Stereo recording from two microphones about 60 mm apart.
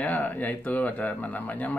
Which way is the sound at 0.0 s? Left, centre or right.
Left.